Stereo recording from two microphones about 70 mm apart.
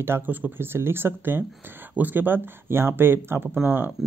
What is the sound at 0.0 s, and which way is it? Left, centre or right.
Speech, right.